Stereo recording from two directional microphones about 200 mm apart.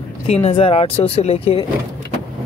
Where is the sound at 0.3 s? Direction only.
30° left (ahead or behind).